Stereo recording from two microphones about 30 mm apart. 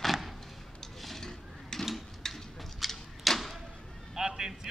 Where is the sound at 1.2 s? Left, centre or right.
Centre.